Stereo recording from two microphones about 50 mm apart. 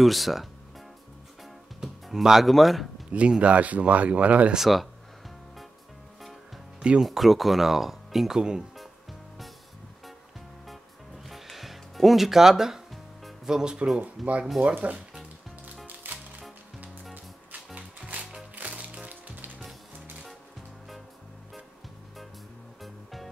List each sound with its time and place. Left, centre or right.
0.0 s music: centre
2.0 s speech: centre
3.1 s speech: right
4.6 s speech: centre
7.0 s speech: centre
11.2 s music: centre
13.5 s speech: centre
14.2 s speech: centre
14.6 s speech: right
15.9 s music: right
17.7 s music: right